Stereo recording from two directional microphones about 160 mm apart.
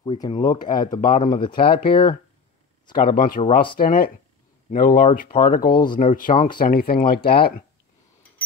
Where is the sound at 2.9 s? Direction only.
60° left (ahead or behind).